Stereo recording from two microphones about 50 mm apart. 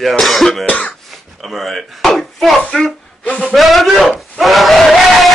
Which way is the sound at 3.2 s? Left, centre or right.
Left.